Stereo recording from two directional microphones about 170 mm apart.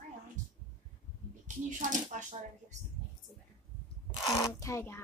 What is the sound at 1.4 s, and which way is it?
Speech, 50° right (ahead or behind).